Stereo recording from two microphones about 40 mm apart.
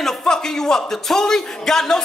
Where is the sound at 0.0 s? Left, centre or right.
Centre.